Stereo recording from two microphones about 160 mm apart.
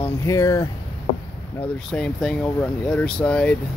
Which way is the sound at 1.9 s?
Centre (ahead or behind).